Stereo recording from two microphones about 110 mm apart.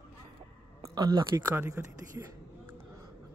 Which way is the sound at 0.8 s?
40° right (ahead or behind).